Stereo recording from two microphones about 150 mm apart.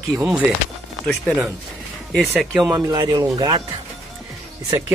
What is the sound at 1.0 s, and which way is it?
Speech, 5° left (ahead or behind).